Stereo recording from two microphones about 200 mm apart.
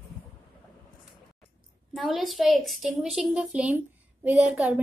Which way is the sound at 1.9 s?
Centre (ahead or behind).